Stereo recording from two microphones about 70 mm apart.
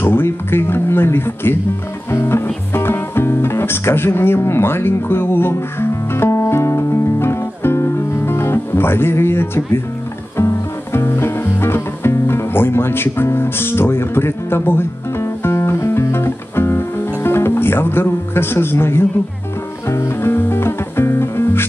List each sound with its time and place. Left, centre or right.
0.0 s speech: left
2.0 s music: left